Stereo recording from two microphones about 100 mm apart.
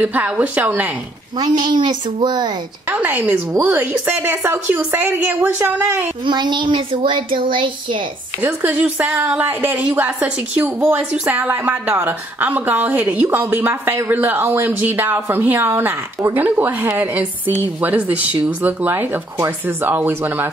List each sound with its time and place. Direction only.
0.0 s a woman's voice: 15° right (ahead or behind)
1.4 s a child's voice: 50° right (ahead or behind)
2.9 s a woman's voice: 15° right (ahead or behind)
6.2 s speech: 50° right (ahead or behind)
8.4 s a woman's voice: 20° right (ahead or behind)